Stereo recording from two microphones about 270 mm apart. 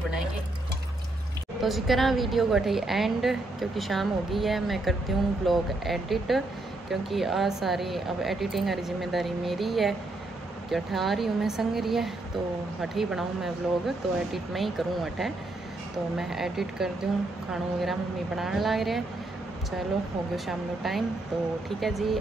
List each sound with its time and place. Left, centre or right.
1.6 s a woman's voice: centre
20.3 s a woman's voice: centre